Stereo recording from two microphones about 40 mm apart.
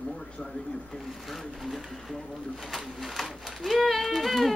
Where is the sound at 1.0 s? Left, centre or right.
Centre.